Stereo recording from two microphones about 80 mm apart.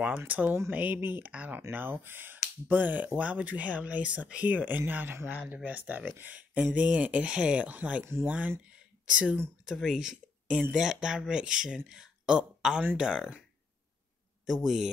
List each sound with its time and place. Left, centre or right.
0.3 s speech: centre
8.0 s speech: right
8.3 s speech: centre
14.4 s a man's voice: centre